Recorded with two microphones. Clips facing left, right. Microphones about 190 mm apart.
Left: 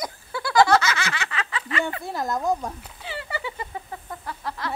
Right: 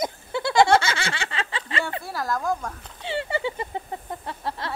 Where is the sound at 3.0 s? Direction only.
25° right (ahead or behind).